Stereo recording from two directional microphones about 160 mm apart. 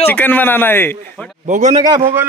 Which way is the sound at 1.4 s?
50° right (ahead or behind).